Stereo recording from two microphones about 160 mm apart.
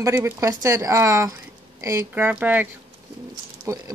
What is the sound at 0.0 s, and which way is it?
Speech, 20° right (ahead or behind).